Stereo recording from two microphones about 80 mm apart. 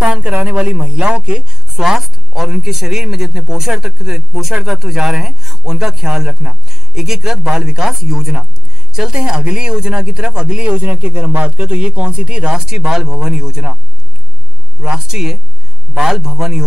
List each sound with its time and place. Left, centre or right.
0.0 s speech: centre
14.8 s speech: centre